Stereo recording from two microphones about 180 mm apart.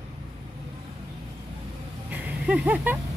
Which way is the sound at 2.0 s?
10° right (ahead or behind).